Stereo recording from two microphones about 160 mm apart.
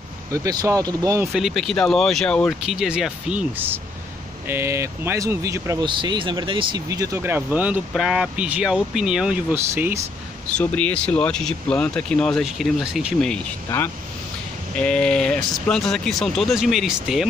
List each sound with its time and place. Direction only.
0.3 s speech: 20° right (ahead or behind)
1.3 s speech: centre (ahead or behind)
2.6 s speech: 5° right (ahead or behind)
5.9 s speech: 30° right (ahead or behind); by 10.0 s 15° right (ahead or behind)
10.5 s speech: 10° left (ahead or behind)
13.7 s speech: 15° left (ahead or behind); by 17.3 s centre (ahead or behind)